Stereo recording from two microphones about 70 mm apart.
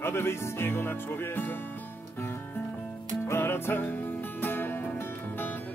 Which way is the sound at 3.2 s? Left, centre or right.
Left.